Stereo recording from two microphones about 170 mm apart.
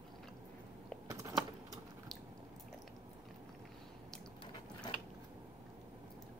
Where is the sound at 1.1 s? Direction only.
20° right (ahead or behind).